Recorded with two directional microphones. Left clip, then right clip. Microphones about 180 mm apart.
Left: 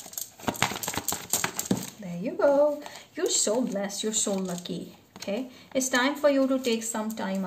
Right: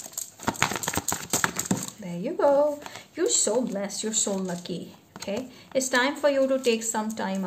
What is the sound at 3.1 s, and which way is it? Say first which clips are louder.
Speech: right 2 dB; 20° right (ahead or behind).